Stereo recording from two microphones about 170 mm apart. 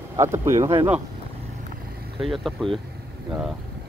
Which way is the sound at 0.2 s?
15° right (ahead or behind).